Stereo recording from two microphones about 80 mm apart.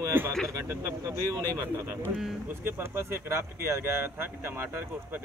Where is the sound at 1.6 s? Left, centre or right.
Right.